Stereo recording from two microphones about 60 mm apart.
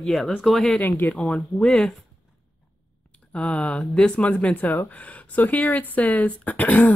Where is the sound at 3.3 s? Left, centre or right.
Centre.